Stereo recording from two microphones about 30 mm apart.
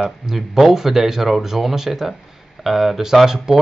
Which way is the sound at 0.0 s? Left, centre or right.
Centre.